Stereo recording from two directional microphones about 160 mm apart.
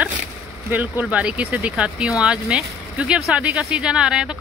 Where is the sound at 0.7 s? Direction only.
10° right (ahead or behind).